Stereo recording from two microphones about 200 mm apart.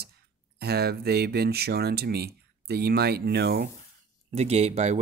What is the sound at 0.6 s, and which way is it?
Speech, 50° right (ahead or behind).